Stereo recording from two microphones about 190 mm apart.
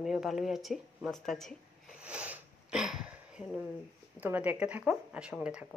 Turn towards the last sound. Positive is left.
turn(degrees=-5)  # may be behind; listen again after turning